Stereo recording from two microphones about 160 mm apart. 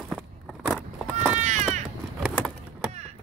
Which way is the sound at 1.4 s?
45° right (ahead or behind).